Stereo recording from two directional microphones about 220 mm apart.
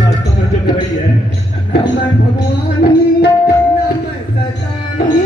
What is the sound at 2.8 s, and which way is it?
Music, 45° left (ahead or behind).